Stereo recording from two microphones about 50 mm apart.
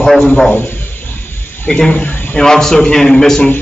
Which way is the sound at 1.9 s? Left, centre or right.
Left.